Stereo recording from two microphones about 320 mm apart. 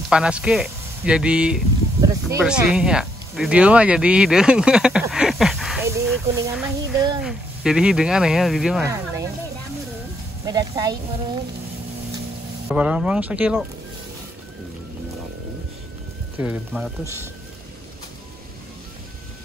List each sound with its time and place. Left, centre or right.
0.1 s speech: centre
10.4 s speech: centre
12.6 s speech: centre
16.3 s speech: centre